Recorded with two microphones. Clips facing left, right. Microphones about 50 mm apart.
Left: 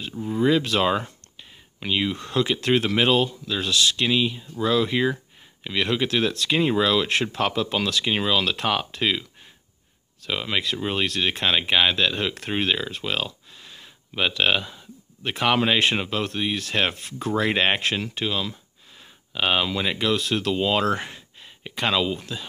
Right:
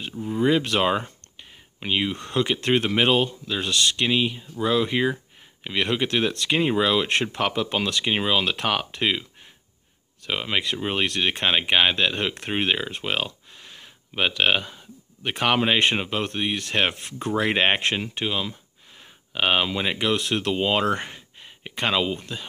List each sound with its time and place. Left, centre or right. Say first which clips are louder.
0.1 s speech: left 1 dB; centre
0.4 s speech: even; right
3.7 s speech: left 1 dB; right
11.1 s speech: right 1 dB; right